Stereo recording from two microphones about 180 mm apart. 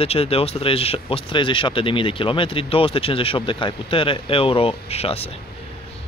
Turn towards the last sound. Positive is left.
turn(degrees=35)  # may be behind; listen again after turning